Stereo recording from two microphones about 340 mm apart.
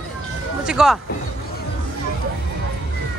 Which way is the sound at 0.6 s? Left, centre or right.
Centre.